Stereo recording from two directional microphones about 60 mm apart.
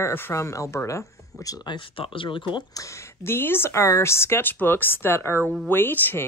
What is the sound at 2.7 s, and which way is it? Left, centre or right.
Speech, left.